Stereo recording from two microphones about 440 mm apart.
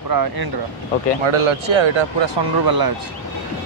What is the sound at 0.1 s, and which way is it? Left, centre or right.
Speech, right.